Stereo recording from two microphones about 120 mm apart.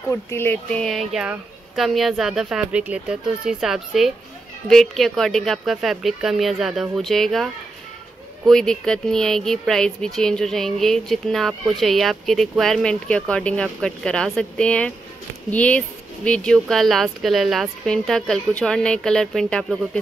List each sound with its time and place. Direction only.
0.1 s a woman's voice: 20° left (ahead or behind); by 7.4 s centre (ahead or behind)
8.5 s a woman's voice: 5° left (ahead or behind)